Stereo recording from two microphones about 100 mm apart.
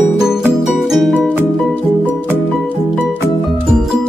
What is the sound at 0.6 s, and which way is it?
Music, centre (ahead or behind).